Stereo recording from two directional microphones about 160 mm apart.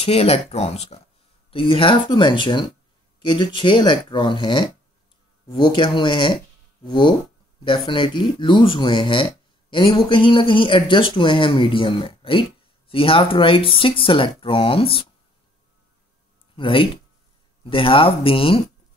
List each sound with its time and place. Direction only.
0.0 s speech: 40° left (ahead or behind)
16.5 s speech: 30° left (ahead or behind)